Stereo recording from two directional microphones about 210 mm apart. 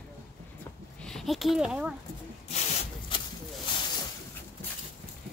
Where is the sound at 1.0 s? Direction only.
Centre (ahead or behind).